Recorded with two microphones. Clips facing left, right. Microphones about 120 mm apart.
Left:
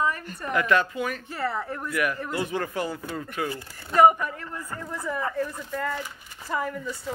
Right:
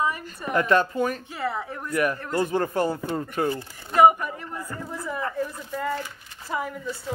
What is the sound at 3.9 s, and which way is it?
Speech, 10° right (ahead or behind).